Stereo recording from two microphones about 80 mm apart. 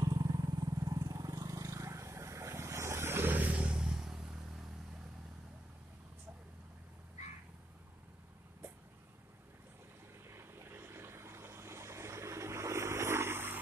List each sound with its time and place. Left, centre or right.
0.0 s vehicle: right; by 4.6 s centre
10.2 s vehicle: right